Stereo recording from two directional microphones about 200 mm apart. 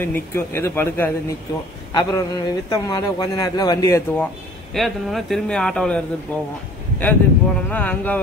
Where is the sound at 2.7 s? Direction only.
15° left (ahead or behind).